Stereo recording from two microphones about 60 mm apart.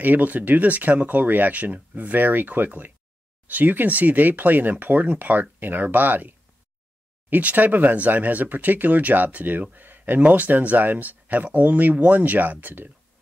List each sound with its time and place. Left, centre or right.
0.0 s speech: right